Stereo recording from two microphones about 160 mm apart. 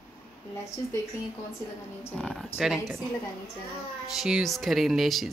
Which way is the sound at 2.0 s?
15° left (ahead or behind).